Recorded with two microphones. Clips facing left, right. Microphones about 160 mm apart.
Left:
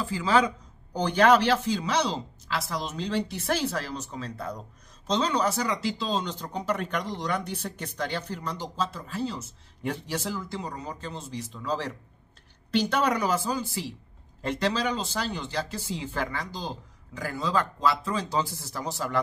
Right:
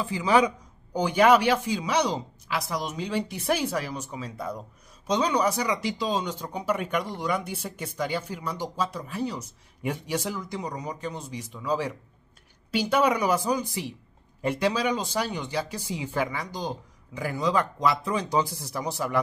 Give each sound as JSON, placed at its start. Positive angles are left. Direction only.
{"t": 0.0, "sound": "speech", "side_deg": -20}